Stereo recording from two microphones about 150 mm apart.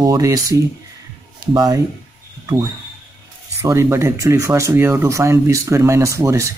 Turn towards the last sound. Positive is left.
turn(degrees=-20)  # may be behind; listen again after turning